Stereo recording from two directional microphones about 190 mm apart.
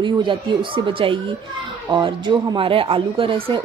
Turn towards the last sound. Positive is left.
turn(degrees=-25)  # may be behind; listen again after turning